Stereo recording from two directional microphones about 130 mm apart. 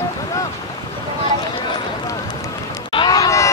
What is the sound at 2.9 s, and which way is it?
Run, 30° left (ahead or behind).